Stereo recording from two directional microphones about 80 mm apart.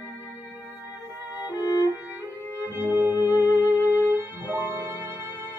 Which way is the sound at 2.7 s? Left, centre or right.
Right.